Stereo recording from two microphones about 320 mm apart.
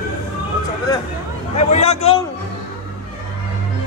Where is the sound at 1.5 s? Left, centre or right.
Centre.